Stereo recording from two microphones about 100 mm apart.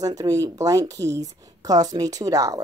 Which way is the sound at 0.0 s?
40° right (ahead or behind).